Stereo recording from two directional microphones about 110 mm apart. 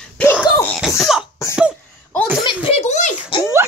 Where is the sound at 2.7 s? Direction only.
90° left.